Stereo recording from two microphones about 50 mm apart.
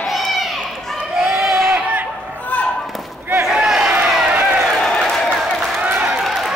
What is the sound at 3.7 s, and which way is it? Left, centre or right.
Run, centre.